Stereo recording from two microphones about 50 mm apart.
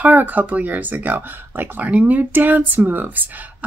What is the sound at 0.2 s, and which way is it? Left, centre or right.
Speech, right.